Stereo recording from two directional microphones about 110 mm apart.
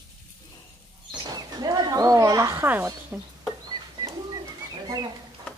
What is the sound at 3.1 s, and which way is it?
Speech, 15° right (ahead or behind).